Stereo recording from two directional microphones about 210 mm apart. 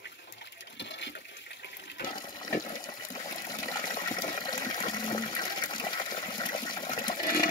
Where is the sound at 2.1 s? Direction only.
20° left (ahead or behind).